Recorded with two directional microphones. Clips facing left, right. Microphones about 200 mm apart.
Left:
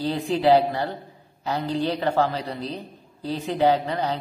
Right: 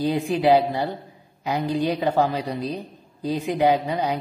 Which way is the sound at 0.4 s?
15° right (ahead or behind).